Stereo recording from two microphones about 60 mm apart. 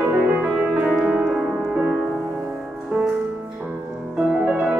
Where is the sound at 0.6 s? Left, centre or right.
Centre.